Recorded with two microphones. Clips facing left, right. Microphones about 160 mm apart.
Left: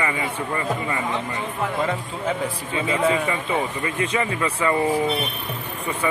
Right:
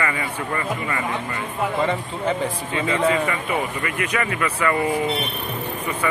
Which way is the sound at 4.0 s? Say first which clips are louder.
Left 1 dB; 25° left (ahead or behind).